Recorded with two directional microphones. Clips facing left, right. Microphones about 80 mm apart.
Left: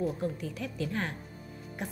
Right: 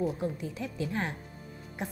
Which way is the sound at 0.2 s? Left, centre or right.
Right.